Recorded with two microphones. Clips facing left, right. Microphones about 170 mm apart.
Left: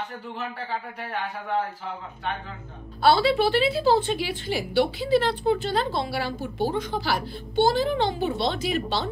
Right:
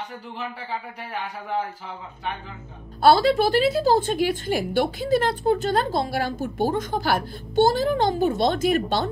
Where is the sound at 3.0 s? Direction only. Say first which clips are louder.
Right 3 dB; 45° right (ahead or behind).